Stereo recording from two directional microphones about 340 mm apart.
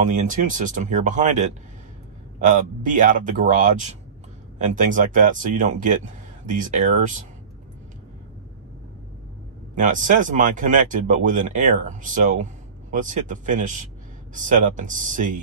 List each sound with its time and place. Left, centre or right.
0.0 s speech: right
9.8 s speech: right